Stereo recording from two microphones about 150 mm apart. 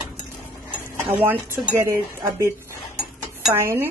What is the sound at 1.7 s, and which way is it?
Speech, 20° right (ahead or behind).